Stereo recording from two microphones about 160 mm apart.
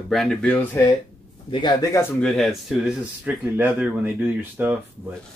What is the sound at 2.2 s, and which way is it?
Speech, centre (ahead or behind).